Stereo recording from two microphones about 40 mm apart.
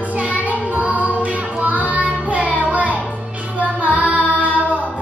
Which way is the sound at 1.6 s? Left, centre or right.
Right.